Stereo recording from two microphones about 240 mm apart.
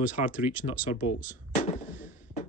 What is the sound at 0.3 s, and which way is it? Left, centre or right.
Speech, centre.